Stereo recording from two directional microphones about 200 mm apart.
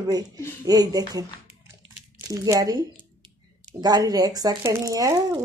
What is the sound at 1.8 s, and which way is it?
Crumpling, 65° right (ahead or behind).